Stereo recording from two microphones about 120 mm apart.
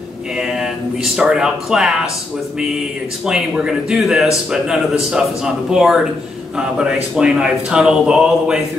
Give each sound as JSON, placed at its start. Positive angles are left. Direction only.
{"t": 1.1, "sound": "speech", "side_deg": -5}
{"t": 3.3, "sound": "a man's voice", "side_deg": -5}